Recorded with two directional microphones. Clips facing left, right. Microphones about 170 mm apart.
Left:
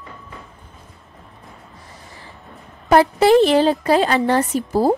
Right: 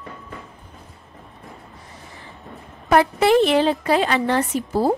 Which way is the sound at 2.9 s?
35° left (ahead or behind).